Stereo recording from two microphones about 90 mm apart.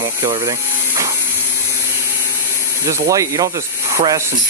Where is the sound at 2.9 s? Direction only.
40° right (ahead or behind).